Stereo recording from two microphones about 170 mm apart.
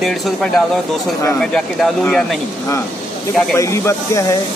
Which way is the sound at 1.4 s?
5° left (ahead or behind).